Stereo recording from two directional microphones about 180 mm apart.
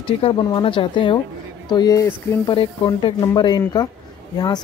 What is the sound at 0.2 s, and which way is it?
Speech, 30° left (ahead or behind).